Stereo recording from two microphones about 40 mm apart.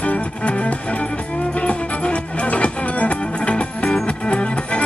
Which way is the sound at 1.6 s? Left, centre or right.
Left.